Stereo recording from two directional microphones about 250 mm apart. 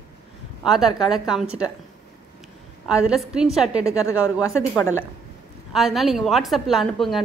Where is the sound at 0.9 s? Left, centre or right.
Centre.